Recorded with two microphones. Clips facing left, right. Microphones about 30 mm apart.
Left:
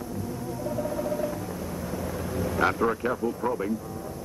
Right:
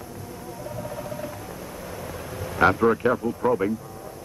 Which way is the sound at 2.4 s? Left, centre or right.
Right.